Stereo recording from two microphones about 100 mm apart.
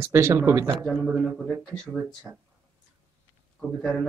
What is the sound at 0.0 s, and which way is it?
Speech, 25° right (ahead or behind).